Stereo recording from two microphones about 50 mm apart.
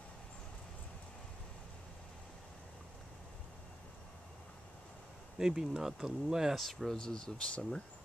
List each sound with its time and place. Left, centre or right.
5.4 s speech: centre
6.5 s speech: centre
7.0 s speech: centre